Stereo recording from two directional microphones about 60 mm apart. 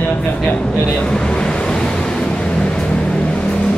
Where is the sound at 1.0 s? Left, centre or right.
Centre.